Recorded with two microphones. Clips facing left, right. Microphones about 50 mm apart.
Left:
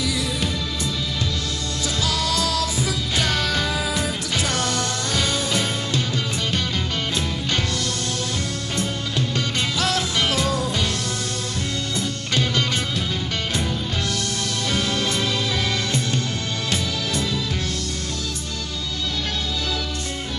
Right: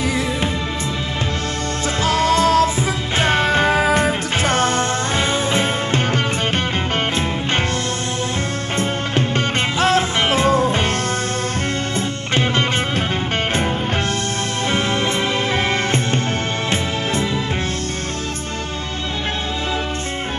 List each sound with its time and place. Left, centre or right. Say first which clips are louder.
2.0 s music: right 10 dB; right
8.7 s music: right 6 dB; right
12.4 s music: right 4 dB; right
14.7 s music: right 4 dB; right